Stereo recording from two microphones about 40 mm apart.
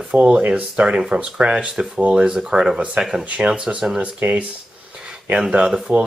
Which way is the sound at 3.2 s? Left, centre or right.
Right.